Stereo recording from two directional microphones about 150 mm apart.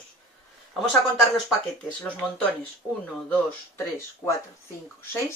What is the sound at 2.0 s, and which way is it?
Speech, 10° left (ahead or behind).